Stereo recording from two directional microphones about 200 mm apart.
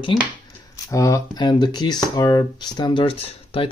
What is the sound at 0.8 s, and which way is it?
Speech, 15° left (ahead or behind).